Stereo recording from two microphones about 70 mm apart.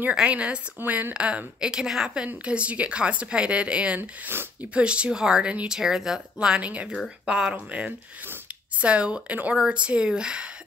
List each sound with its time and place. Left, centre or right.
0.1 s a woman's voice: centre
4.3 s speech: right
4.7 s a woman's voice: centre